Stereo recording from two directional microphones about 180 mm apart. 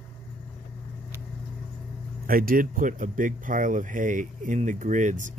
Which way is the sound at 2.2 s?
50° right (ahead or behind).